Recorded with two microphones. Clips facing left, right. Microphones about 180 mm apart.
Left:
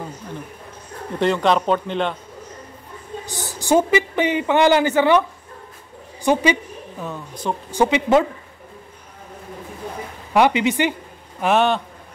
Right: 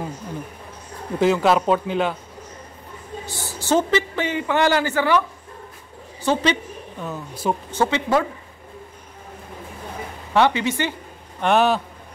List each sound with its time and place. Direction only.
1.2 s speech: 5° right (ahead or behind)
3.3 s a woman's voice: 15° left (ahead or behind)
6.2 s a woman's voice: 10° left (ahead or behind)
7.1 s speech: 10° right (ahead or behind)
7.7 s a woman's voice: 15° left (ahead or behind)
10.3 s a woman's voice: 15° left (ahead or behind)
11.4 s speech: centre (ahead or behind)